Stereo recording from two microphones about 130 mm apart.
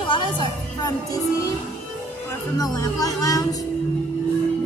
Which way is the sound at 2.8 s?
30° left (ahead or behind).